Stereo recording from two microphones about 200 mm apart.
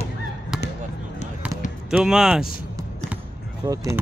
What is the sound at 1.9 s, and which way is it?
Speech, 5° right (ahead or behind).